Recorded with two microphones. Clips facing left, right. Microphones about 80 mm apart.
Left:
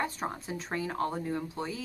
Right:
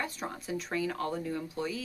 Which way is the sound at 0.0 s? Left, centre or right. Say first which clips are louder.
Left 3 dB; left.